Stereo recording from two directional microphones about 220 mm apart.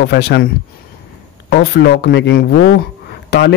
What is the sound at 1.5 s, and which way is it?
Speech, 50° left (ahead or behind).